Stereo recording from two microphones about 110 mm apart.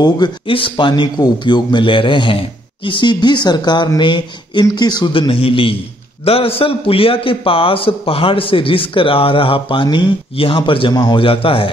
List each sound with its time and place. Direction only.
0.5 s a man's voice: 50° left (ahead or behind)
5.3 s a man's voice: 55° left (ahead or behind)